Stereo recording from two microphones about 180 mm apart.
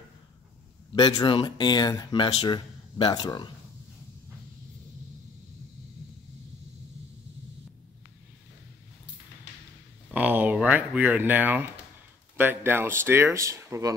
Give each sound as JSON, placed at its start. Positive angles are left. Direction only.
{"t": 0.9, "sound": "speech", "side_deg": 25}
{"t": 10.1, "sound": "speech", "side_deg": -10}